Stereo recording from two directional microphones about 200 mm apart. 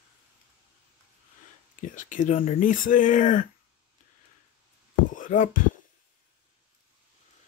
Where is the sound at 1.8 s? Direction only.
40° left (ahead or behind).